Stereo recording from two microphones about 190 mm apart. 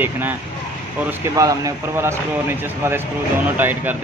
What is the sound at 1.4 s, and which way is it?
Speech, 15° right (ahead or behind).